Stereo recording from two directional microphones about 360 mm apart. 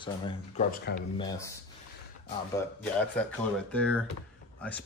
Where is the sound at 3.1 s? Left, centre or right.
Centre.